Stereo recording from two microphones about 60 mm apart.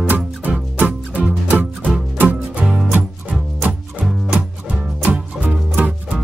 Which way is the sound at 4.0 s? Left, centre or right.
Centre.